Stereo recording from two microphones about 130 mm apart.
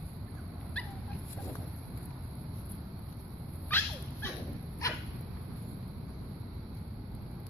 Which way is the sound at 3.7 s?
15° left (ahead or behind).